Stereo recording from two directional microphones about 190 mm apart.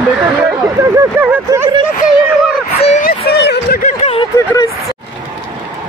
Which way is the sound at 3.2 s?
60° left (ahead or behind).